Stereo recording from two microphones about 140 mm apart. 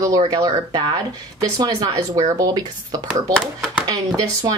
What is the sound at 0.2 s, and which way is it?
Speech, 30° right (ahead or behind).